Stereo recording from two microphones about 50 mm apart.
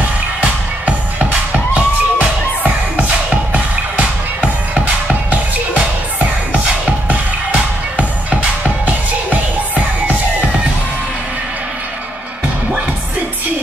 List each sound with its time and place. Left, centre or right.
0.4 s music: right